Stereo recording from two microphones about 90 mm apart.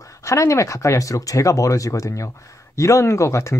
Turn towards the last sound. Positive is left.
turn(degrees=35)  # may be behind; listen again after turning